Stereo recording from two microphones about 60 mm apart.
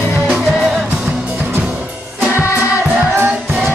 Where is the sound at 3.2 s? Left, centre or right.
Right.